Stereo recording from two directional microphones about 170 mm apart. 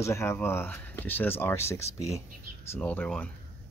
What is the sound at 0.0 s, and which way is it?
Speech, 15° left (ahead or behind).